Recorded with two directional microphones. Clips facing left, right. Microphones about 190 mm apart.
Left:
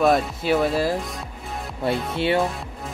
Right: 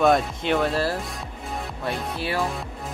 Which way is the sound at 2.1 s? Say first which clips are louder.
Left 9 dB; 25° left (ahead or behind).